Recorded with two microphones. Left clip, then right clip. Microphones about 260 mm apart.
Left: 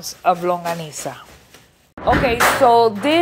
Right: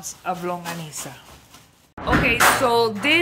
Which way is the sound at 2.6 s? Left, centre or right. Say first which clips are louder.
Left 6 dB; centre.